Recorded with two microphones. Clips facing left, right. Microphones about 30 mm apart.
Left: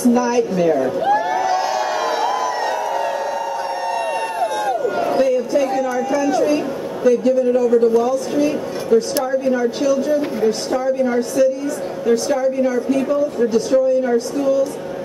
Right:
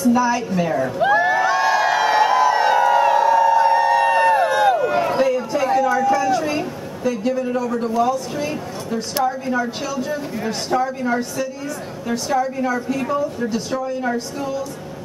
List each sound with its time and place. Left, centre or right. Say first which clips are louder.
0.0 s a woman's voice: left 2 dB; centre
1.2 s a sound: right 2 dB; centre
12.1 s a woman's voice: left 4 dB; centre